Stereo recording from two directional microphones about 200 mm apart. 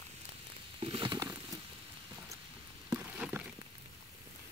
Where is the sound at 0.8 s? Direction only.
25° right (ahead or behind).